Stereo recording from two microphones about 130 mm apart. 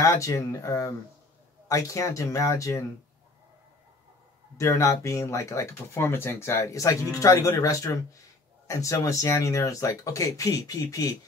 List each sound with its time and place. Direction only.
0.0 s speech: 25° left (ahead or behind)
4.6 s speech: 25° left (ahead or behind)